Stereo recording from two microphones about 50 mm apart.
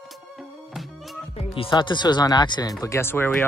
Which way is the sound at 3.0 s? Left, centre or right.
Left.